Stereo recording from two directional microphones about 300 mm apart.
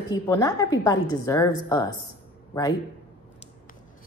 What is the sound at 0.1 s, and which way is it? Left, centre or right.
A woman's voice, centre.